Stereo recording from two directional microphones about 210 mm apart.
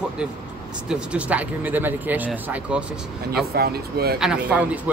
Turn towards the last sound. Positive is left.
turn(degrees=-5)  # may be behind; listen again after turning